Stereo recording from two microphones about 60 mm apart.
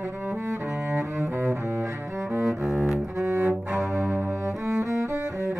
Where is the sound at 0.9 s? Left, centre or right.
Right.